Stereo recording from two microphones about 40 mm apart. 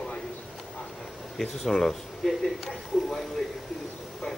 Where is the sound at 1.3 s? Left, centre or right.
Centre.